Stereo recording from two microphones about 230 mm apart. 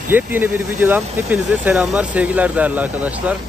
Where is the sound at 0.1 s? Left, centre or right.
Centre.